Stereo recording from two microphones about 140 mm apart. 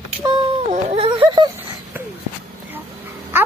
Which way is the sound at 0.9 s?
40° right (ahead or behind).